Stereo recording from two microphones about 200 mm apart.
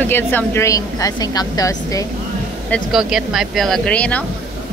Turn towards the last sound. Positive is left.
turn(degrees=5)  # may be behind; listen again after turning